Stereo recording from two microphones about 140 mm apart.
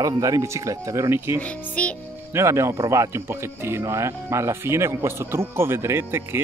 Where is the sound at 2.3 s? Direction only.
20° right (ahead or behind).